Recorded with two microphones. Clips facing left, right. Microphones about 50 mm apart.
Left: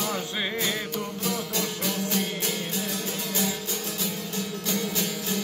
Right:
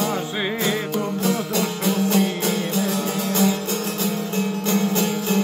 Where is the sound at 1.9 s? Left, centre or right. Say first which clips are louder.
Right 11 dB; right.